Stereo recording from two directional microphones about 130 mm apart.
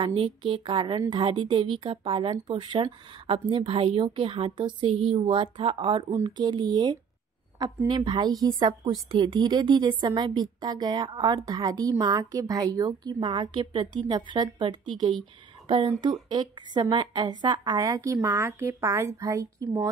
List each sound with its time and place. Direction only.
0.0 s a woman's voice: 40° right (ahead or behind)